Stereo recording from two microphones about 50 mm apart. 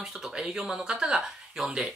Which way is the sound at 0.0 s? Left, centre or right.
Centre.